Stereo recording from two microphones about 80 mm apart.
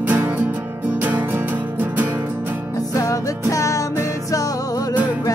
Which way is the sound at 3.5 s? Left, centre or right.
Left.